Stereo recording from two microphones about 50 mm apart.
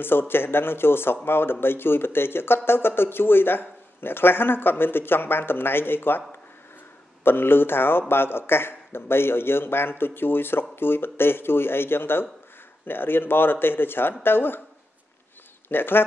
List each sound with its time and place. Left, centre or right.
0.0 s speech: left
7.2 s speech: left
15.7 s speech: left